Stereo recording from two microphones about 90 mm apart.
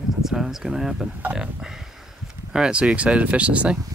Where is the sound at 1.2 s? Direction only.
15° right (ahead or behind).